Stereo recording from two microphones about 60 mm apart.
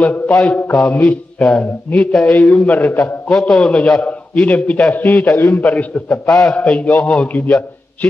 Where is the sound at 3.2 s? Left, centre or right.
Centre; by 8.1 s left.